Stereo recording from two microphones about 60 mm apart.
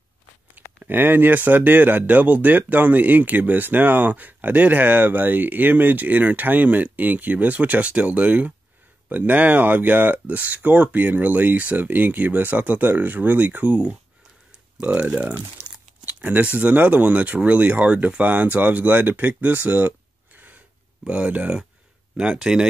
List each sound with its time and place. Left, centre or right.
0.8 s speech: right
14.8 s speech: right
16.1 s a sound: right
16.5 s speech: right
20.3 s a sound: right
21.1 s speech: centre